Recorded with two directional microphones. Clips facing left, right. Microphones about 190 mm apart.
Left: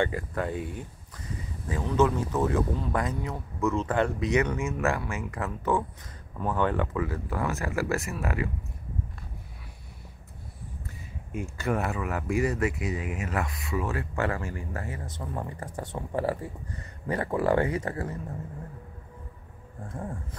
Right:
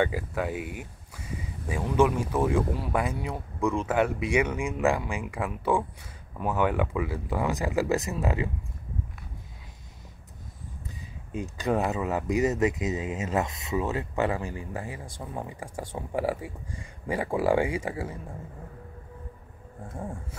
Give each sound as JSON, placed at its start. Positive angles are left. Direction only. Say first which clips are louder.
{"t": 0.0, "sound": "speech", "louder": "right 1 dB", "side_deg": -5}
{"t": 11.3, "sound": "speech", "louder": "right 2 dB", "side_deg": -15}
{"t": 19.8, "sound": "speech", "louder": "even", "side_deg": -10}